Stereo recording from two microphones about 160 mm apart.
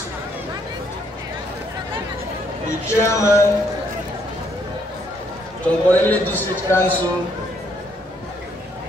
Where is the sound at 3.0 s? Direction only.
15° left (ahead or behind).